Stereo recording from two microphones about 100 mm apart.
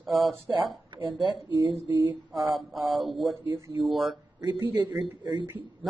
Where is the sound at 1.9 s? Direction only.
30° right (ahead or behind).